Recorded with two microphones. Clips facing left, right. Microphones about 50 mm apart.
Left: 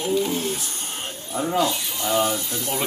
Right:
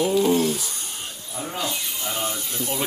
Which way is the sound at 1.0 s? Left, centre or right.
Left.